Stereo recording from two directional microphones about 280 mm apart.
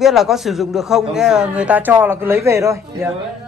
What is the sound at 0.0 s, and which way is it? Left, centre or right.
A man's voice, centre.